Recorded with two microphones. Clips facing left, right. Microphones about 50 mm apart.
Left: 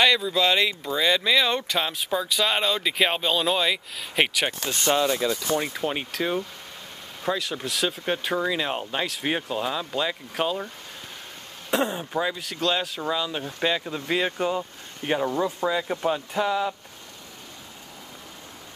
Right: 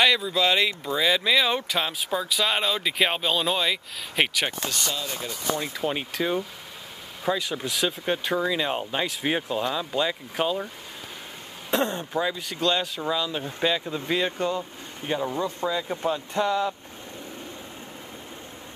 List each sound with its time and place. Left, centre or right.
0.0 s speech: centre
4.9 s speech: left
5.7 s speech: centre
11.7 s speech: centre